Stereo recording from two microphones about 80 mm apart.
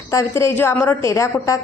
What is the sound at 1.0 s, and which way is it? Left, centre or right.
Speech, left.